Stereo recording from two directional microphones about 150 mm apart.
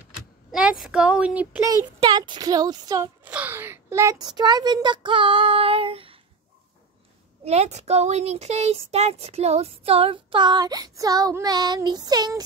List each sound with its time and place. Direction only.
0.5 s speech: 5° right (ahead or behind)
2.0 s speech: 30° right (ahead or behind)
3.3 s a sound: 10° right (ahead or behind)
4.2 s speech: 30° right (ahead or behind)
7.4 s speech: 45° right (ahead or behind); by 12.4 s 25° right (ahead or behind)